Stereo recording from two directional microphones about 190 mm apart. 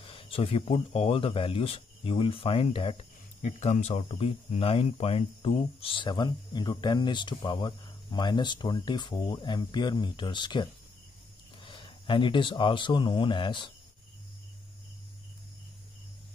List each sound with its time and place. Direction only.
0.0 s speech: 30° left (ahead or behind)